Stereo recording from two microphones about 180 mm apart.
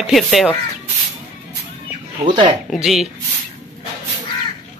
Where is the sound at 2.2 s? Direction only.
25° right (ahead or behind).